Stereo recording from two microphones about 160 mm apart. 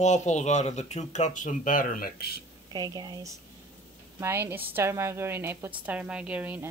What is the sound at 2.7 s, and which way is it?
Speech, 25° right (ahead or behind).